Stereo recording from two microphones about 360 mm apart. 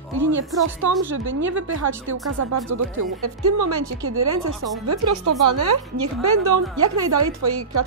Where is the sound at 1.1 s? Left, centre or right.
Right.